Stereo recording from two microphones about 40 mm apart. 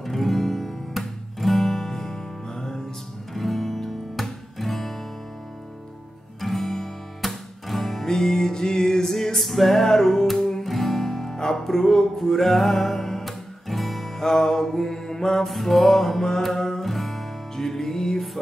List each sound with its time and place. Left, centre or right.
0.0 s guitar: centre
3.3 s music: centre
6.4 s guitar: centre
7.2 s music: centre